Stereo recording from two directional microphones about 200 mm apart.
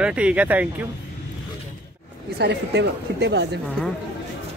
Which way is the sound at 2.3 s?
55° right (ahead or behind).